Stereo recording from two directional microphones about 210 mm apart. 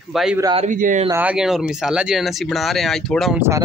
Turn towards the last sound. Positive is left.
turn(degrees=0)  # may be behind; listen again after turning